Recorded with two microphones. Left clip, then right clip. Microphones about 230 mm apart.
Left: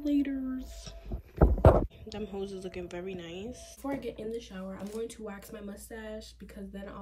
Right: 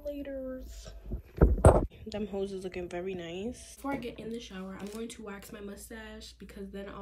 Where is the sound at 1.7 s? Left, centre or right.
Centre.